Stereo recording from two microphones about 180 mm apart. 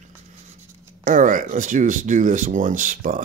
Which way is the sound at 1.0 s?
50° right (ahead or behind).